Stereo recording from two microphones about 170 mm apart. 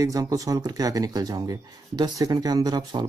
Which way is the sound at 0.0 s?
20° right (ahead or behind).